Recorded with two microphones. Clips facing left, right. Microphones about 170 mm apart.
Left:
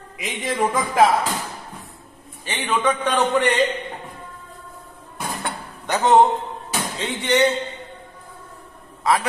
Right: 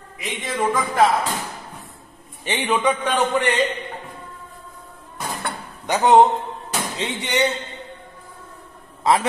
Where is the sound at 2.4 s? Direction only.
15° right (ahead or behind).